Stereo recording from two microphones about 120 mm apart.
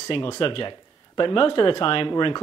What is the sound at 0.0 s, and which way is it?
Speech, 50° left (ahead or behind).